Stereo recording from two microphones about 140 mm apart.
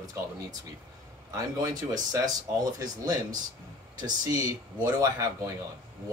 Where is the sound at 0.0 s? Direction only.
25° right (ahead or behind).